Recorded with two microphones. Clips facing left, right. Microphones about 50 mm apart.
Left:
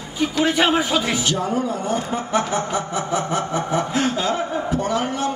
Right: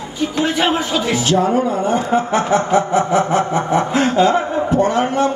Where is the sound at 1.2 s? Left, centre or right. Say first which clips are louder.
Right 6 dB; right.